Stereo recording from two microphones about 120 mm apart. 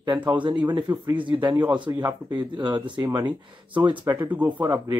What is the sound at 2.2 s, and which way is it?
Speech, 40° right (ahead or behind).